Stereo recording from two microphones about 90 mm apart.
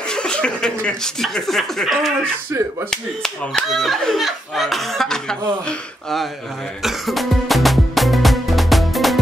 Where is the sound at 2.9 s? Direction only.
5° left (ahead or behind).